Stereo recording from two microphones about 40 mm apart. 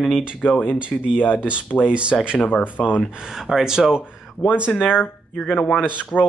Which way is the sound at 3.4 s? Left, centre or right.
Centre.